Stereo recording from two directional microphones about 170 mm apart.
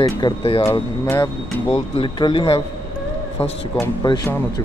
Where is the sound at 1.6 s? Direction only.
35° left (ahead or behind).